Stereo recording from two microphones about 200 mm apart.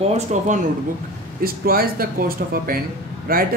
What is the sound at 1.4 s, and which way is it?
Speech, 45° right (ahead or behind).